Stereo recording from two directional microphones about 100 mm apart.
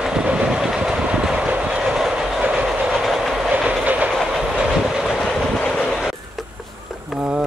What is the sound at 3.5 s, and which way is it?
Train, 15° right (ahead or behind).